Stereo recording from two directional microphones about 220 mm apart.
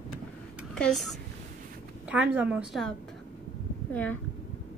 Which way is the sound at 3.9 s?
5° left (ahead or behind).